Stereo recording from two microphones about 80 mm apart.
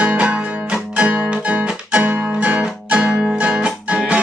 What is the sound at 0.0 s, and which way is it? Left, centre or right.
Music, centre.